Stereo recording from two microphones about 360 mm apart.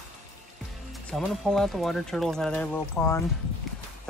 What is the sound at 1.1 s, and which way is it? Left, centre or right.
Speech, centre.